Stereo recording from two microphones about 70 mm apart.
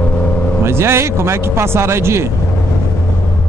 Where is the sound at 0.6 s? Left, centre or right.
Right.